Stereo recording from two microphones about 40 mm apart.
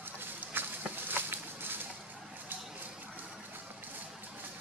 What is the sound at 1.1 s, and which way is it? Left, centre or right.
Walk, right.